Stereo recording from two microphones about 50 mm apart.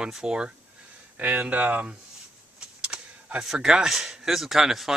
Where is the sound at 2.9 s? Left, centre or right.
Centre.